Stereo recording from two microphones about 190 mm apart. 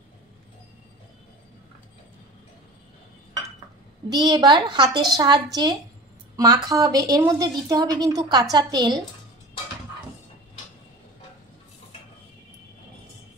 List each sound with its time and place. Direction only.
4.1 s a woman's voice: 20° right (ahead or behind)